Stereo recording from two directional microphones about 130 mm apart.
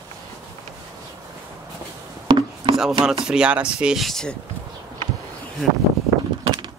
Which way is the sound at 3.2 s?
5° right (ahead or behind).